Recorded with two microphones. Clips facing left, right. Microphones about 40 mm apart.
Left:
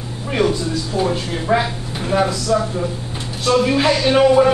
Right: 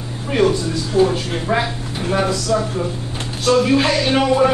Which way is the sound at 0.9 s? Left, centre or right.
Left.